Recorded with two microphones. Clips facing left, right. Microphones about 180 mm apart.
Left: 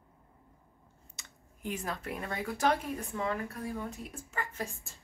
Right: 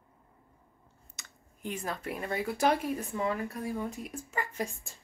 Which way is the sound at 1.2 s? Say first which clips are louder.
Right 1 dB; 30° left (ahead or behind).